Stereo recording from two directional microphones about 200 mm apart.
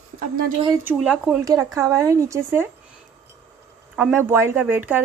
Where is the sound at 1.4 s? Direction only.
15° right (ahead or behind).